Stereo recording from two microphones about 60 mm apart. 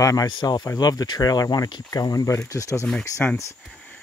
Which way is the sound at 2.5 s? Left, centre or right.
Left.